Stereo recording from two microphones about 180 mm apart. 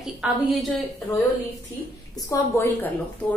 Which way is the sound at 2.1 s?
15° left (ahead or behind).